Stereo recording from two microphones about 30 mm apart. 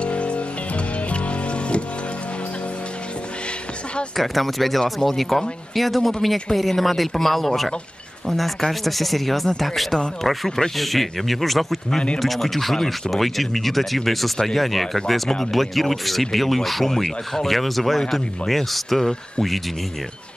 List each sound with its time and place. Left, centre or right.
0.0 s music: left
4.2 s speech: centre